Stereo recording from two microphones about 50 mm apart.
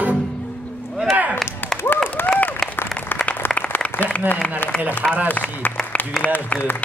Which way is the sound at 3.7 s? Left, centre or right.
Left.